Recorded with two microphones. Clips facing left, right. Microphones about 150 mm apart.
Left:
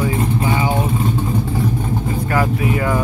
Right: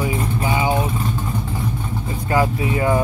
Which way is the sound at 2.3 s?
25° right (ahead or behind).